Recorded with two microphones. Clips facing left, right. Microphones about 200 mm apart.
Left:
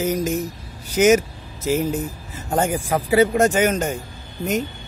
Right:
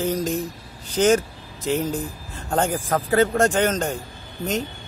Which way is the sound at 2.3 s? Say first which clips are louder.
Left 1 dB; 10° left (ahead or behind).